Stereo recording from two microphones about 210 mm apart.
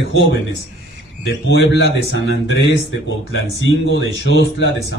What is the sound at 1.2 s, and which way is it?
Speech, 55° left (ahead or behind).